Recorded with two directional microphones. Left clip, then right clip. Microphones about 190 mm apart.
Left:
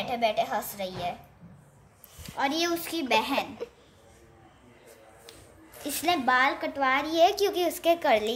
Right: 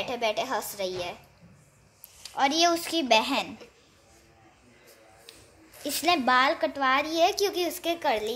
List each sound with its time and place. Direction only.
0.0 s a woman's voice: 45° right (ahead or behind)
2.3 s a child's voice: 40° right (ahead or behind)
5.9 s a child's voice: 35° right (ahead or behind)
7.1 s a woman's voice: 5° right (ahead or behind)